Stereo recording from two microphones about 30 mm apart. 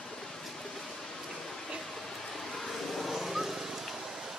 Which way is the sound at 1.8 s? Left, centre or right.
Centre.